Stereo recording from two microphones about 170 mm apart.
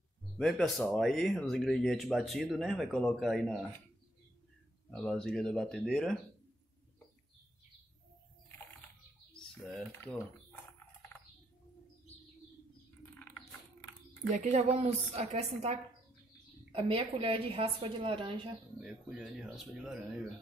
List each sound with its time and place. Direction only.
0.2 s speech: 5° left (ahead or behind)
4.9 s speech: 5° left (ahead or behind)
9.7 s speech: 5° left (ahead or behind)
14.3 s a woman's voice: 40° right (ahead or behind)
18.8 s speech: 5° right (ahead or behind)